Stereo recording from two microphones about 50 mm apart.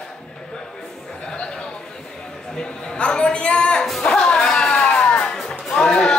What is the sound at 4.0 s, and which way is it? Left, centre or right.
Music, centre.